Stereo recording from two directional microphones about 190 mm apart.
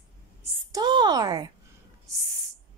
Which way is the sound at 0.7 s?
20° right (ahead or behind).